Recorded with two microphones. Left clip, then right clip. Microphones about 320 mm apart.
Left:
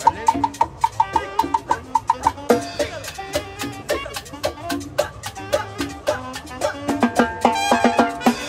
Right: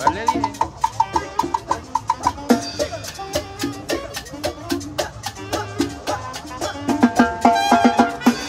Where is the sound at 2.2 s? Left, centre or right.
Left.